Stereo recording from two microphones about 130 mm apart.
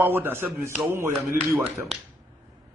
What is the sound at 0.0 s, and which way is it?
A man's voice, 15° right (ahead or behind).